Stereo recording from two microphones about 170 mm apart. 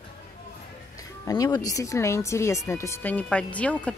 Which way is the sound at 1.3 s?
20° left (ahead or behind).